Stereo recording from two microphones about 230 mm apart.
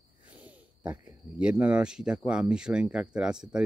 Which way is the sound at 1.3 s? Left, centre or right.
Centre.